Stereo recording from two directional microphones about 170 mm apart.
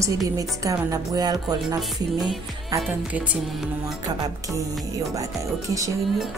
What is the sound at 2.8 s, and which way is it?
Music, 5° right (ahead or behind).